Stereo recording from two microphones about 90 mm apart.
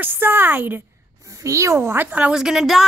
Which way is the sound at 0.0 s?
25° right (ahead or behind).